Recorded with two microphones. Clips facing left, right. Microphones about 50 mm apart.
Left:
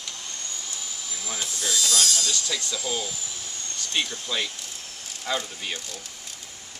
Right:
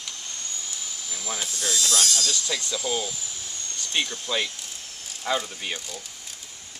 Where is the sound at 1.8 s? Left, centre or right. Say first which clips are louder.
Even; right.